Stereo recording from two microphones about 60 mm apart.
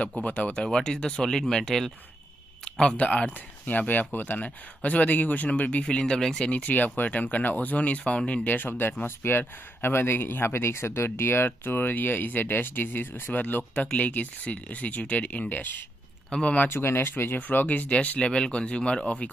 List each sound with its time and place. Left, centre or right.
0.2 s speech: left
0.5 s speech: centre
2.6 s a sound: centre
3.0 s speech: left
6.5 s speech: left
8.5 s speech: left; by 16.6 s centre
16.6 s speech: left; by 19.3 s centre